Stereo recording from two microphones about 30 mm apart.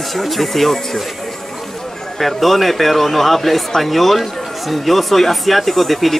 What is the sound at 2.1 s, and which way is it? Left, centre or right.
Speech, centre.